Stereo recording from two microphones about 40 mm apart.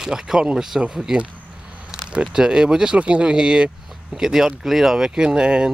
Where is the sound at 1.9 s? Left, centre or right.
Centre.